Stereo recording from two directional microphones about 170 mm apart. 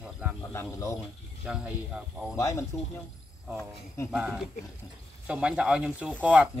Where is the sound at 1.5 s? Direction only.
5° right (ahead or behind).